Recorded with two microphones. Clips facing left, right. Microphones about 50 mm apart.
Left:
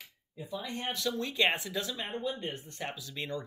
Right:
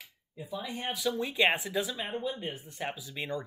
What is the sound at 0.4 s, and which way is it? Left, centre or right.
Speech, centre.